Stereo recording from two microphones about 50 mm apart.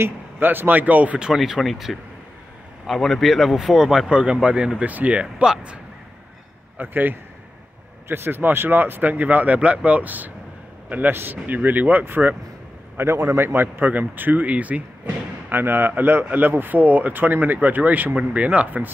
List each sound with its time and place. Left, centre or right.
0.0 s speech: right
1.2 s speech: centre
4.1 s speech: centre
4.8 s speech: right
6.8 s speech: right
9.1 s speech: right
11.1 s speech: right
11.4 s speech: right
12.9 s a man's voice: right
13.5 s speech: right
15.5 s speech: right